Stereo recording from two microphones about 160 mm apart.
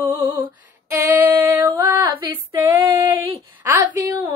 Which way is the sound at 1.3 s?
15° right (ahead or behind).